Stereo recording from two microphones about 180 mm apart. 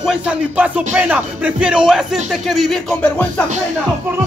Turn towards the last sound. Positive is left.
turn(degrees=5)  # may be behind; listen again after turning